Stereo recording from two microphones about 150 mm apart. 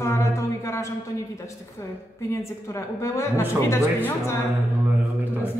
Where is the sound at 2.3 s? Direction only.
20° left (ahead or behind).